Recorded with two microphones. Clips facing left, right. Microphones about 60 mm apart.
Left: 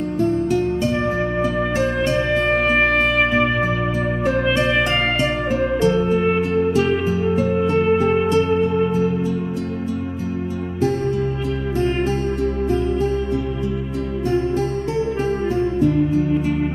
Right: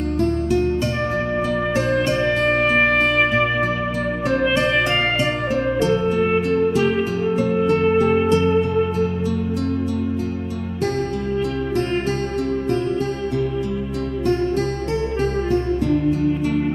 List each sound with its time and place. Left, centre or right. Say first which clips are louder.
1.8 s music: right 1 dB; centre
15.8 s music: left 1 dB; right
16.2 s music: left 1 dB; centre